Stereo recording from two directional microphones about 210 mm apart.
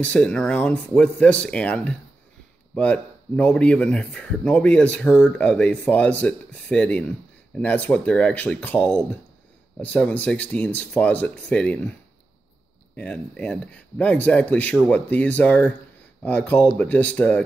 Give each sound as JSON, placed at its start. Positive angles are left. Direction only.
{"t": 0.0, "sound": "speech", "side_deg": 5}
{"t": 12.9, "sound": "speech", "side_deg": 5}